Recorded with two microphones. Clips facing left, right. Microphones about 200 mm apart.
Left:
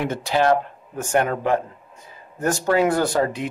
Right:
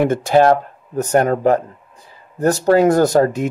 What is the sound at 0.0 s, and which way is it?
Speech, 50° right (ahead or behind).